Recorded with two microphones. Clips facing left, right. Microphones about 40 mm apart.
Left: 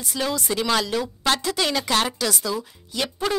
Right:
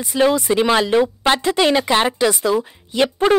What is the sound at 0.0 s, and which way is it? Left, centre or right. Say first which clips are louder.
A woman's voice: right 10 dB; right.